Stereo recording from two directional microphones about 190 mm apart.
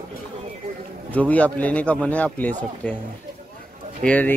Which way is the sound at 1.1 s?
10° left (ahead or behind).